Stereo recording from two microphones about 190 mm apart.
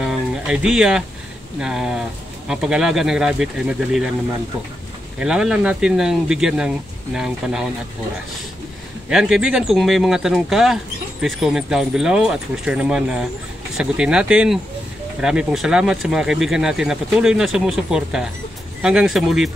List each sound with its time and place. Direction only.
0.0 s a sound: 5° right (ahead or behind)
1.6 s speech: 5° right (ahead or behind)
5.2 s speech: 5° right (ahead or behind)
9.1 s speech: 5° right (ahead or behind)